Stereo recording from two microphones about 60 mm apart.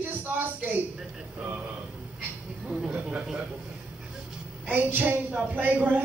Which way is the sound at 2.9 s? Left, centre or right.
Right.